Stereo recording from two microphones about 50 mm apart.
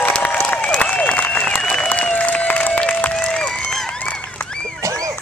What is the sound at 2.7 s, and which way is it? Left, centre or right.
Applause, left.